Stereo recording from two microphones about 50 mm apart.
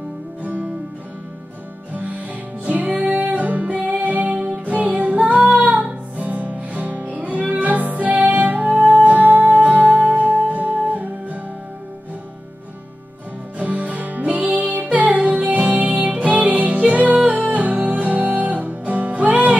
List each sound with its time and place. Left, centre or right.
0.4 s music: right
2.6 s music: right
5.4 s female singing: centre
5.7 s music: right
13.6 s music: right